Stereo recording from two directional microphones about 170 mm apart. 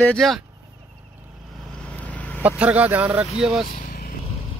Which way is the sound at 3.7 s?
60° left (ahead or behind).